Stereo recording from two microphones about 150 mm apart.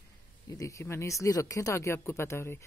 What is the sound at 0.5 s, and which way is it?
Speech, 20° left (ahead or behind).